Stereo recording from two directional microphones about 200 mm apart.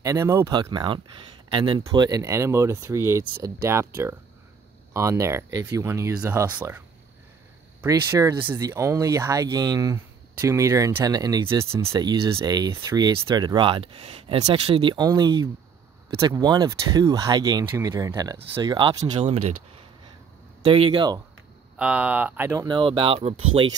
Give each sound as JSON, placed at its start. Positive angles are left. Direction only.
{"t": 0.0, "sound": "speech", "side_deg": -15}
{"t": 7.8, "sound": "speech", "side_deg": -15}
{"t": 20.6, "sound": "speech", "side_deg": -25}
{"t": 21.7, "sound": "speech", "side_deg": -5}